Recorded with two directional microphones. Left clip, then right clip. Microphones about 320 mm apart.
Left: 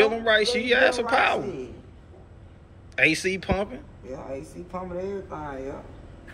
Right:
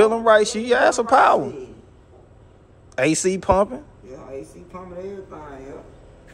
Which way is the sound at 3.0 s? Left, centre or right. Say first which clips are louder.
Right 3 dB; centre.